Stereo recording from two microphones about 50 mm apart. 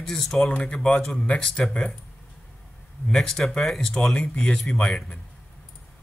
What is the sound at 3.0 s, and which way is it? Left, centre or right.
Speech, centre.